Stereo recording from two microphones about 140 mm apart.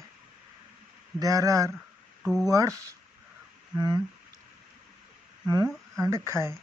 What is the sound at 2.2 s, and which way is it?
Speech, 5° right (ahead or behind).